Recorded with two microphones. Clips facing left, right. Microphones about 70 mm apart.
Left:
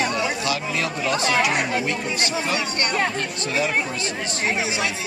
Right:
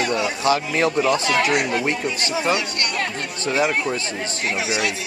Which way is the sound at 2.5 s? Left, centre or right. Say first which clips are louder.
Left 1 dB; left.